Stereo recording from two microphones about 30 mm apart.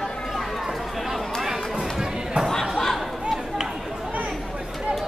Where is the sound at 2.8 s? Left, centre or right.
Centre.